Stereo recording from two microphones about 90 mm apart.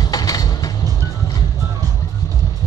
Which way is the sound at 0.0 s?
45° left (ahead or behind).